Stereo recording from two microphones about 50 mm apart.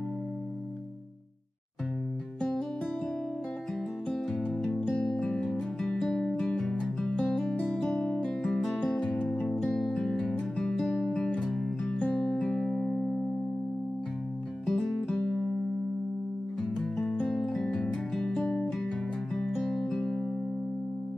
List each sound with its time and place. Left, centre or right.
5.2 s music: centre
12.0 s music: left
12.4 s music: centre
14.7 s music: centre
15.1 s music: centre
17.1 s music: centre